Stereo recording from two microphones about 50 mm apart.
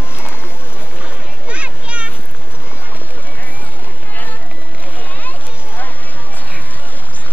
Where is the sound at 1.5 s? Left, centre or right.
Right.